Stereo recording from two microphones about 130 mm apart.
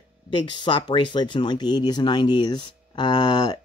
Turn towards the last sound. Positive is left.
turn(degrees=40)  # may be behind; listen again after turning